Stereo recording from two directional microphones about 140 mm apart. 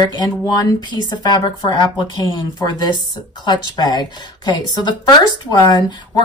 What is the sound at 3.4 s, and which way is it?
Speech, 30° left (ahead or behind).